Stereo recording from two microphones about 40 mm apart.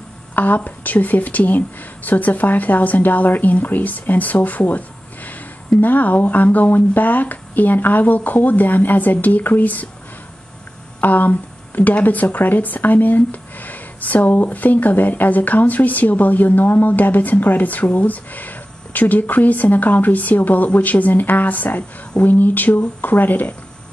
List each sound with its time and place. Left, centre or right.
0.6 s speech: left
11.0 s a sound: left
11.9 s speech: left